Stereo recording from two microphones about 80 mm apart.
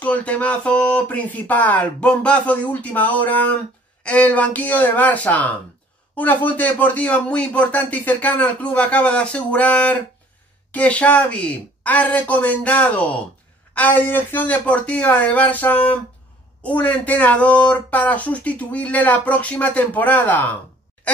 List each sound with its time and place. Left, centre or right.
0.0 s speech: centre